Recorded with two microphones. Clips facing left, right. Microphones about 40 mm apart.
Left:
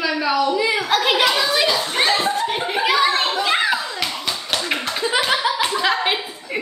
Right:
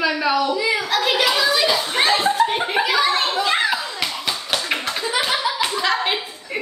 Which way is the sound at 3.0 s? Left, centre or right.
Centre.